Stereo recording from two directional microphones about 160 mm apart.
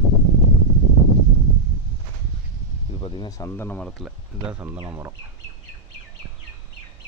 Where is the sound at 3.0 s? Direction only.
30° left (ahead or behind).